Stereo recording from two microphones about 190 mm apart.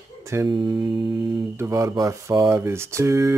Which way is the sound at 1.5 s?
15° right (ahead or behind).